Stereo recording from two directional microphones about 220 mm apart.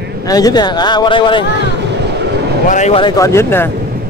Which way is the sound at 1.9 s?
50° right (ahead or behind).